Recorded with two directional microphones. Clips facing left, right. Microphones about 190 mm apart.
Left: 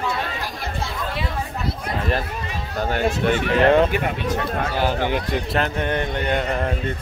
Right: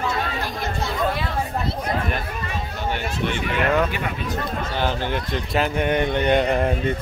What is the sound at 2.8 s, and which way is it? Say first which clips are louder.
Speech: left 6 dB; 45° left (ahead or behind).